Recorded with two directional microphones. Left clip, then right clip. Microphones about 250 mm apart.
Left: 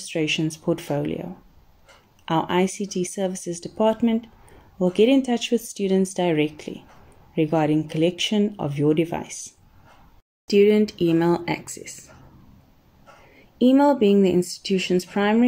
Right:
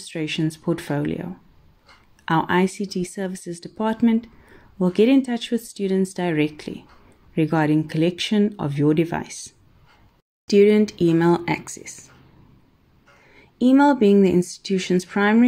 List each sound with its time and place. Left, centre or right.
0.0 s speech: right
2.2 s speech: right
13.6 s speech: right